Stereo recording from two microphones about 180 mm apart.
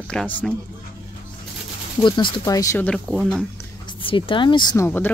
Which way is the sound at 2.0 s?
25° left (ahead or behind).